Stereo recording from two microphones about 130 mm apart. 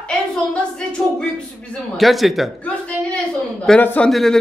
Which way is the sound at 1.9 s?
Centre (ahead or behind).